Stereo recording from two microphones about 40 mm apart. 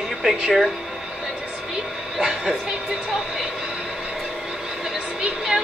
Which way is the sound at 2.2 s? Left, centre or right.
Centre.